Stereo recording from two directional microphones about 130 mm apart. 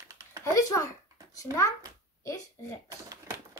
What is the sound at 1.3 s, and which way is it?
Speech, 25° left (ahead or behind).